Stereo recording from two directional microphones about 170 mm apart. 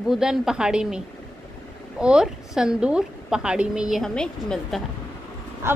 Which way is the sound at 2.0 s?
5° right (ahead or behind).